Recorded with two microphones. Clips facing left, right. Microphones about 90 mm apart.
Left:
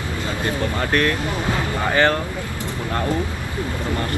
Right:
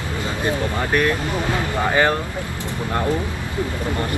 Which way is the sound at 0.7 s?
15° right (ahead or behind).